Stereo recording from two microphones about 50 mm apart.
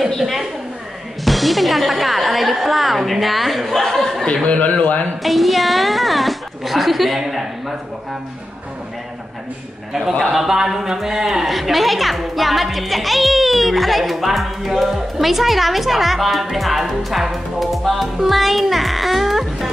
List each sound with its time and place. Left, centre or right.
0.2 s a sound: centre
1.2 s speech: centre
4.5 s a man's voice: left
5.2 s a woman's voice: centre
10.2 s a woman's voice: centre